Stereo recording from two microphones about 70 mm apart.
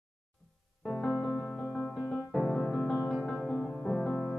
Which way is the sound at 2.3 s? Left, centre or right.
Centre.